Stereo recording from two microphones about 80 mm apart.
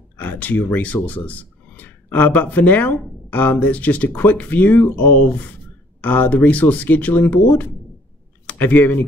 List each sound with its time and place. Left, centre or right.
0.2 s speech: left